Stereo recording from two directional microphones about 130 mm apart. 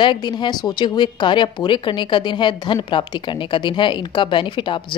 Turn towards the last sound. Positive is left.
turn(degrees=40)  # may be behind; listen again after turning